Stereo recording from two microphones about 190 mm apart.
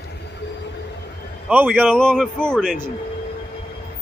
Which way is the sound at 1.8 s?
5° left (ahead or behind).